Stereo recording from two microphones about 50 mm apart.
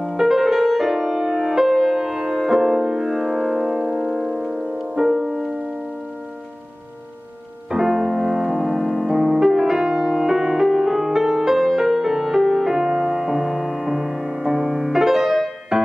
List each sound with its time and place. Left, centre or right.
0.2 s music: centre
4.0 s music: right
5.0 s music: centre
7.7 s music: centre